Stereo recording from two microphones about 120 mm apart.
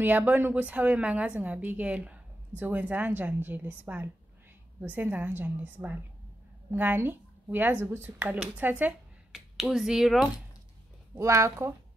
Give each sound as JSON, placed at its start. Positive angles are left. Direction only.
{"t": 0.0, "sound": "a woman's voice", "side_deg": -15}
{"t": 11.1, "sound": "speech", "side_deg": -25}